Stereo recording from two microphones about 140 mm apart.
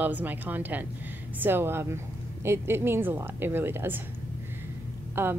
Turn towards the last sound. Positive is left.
turn(degrees=-15)  # may be behind; listen again after turning